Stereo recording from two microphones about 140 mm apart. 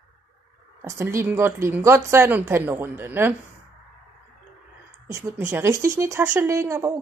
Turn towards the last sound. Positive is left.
turn(degrees=-20)  # may be behind; listen again after turning